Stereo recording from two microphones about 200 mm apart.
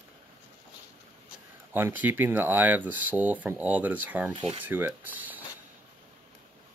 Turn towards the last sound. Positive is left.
turn(degrees=-10)  # may be behind; listen again after turning